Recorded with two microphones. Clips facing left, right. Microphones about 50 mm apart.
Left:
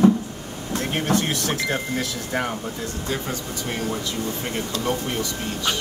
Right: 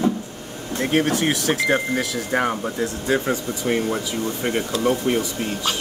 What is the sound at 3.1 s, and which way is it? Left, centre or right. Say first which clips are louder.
Speech: right 8 dB; right.